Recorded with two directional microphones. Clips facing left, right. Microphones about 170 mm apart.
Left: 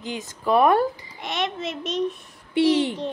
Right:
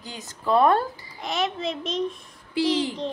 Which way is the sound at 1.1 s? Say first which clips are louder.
Right 3 dB; centre (ahead or behind).